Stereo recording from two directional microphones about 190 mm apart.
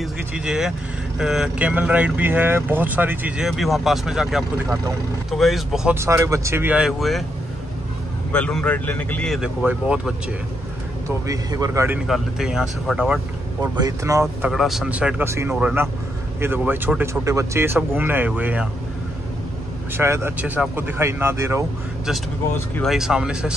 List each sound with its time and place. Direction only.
0.0 s speech: 5° right (ahead or behind)
5.9 s speech: 15° right (ahead or behind); by 7.2 s centre (ahead or behind)
8.3 s speech: 5° left (ahead or behind)
11.1 s speech: 15° right (ahead or behind)
12.1 s speech: 5° right (ahead or behind)
13.6 s speech: 15° right (ahead or behind)
14.2 s speech: centre (ahead or behind)
20.0 s speech: 15° right (ahead or behind)
22.8 s speech: centre (ahead or behind)